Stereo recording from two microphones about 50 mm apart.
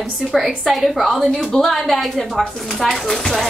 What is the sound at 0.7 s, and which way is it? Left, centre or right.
A woman's voice, centre.